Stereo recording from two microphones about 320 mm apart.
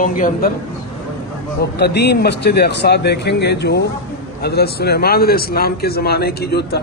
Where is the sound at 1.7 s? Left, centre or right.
Left.